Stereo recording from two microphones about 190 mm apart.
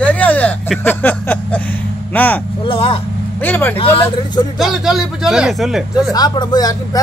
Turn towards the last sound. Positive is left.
turn(degrees=20)  # may be behind; listen again after turning